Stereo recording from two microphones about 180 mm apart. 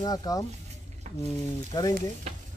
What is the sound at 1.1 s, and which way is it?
Boiling, 40° right (ahead or behind).